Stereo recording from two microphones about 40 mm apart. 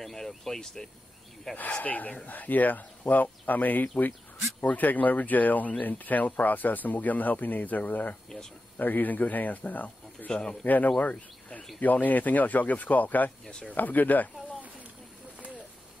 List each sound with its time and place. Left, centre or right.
0.0 s vehicle: centre
0.8 s speech: centre
1.7 s speech: left
10.3 s a man's voice: left
10.6 s speech: left
13.5 s a man's voice: left
13.7 s speech: left